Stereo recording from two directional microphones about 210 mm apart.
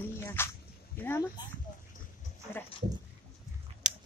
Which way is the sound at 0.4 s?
10° left (ahead or behind).